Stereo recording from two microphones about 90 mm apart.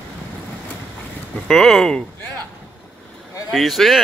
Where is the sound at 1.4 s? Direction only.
5° left (ahead or behind).